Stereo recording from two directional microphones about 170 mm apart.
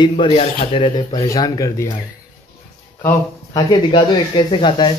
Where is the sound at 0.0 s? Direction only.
30° left (ahead or behind).